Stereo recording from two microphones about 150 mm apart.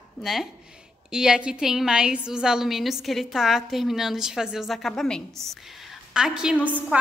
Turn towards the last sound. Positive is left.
turn(degrees=-10)  # may be behind; listen again after turning